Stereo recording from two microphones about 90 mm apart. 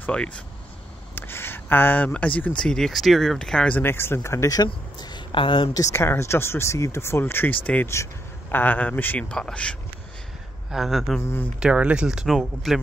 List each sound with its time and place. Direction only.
0.0 s speech: 10° left (ahead or behind)
1.1 s speech: 25° left (ahead or behind)
3.8 s speech: 25° left (ahead or behind)
4.9 s a sound: 55° left (ahead or behind); by 5.7 s 70° left (ahead or behind)
5.8 s speech: 30° left (ahead or behind); by 7.9 s 15° left (ahead or behind)
7.9 s speech: 25° left (ahead or behind); by 9.8 s 10° left (ahead or behind)
10.7 s speech: centre (ahead or behind)
11.1 s speech: 30° left (ahead or behind)
11.6 s speech: 10° right (ahead or behind)